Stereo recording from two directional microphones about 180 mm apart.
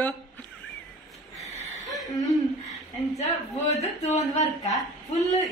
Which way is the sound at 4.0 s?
40° left (ahead or behind).